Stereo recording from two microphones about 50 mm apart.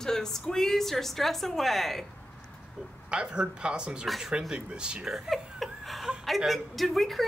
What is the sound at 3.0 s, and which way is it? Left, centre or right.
Speech, centre.